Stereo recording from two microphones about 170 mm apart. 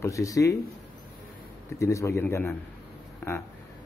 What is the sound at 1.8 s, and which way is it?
Speech, 15° left (ahead or behind).